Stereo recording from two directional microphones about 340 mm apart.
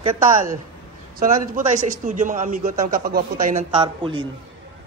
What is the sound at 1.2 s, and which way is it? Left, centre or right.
A man's voice, right.